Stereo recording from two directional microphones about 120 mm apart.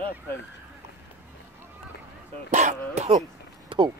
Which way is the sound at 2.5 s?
85° right.